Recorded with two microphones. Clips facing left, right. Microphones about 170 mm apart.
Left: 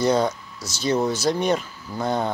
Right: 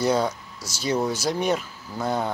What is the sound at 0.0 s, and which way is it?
Speech, 10° right (ahead or behind).